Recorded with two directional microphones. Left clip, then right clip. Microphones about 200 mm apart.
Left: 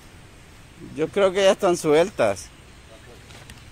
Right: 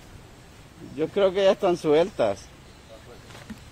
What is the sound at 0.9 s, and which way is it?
Speech, 20° left (ahead or behind).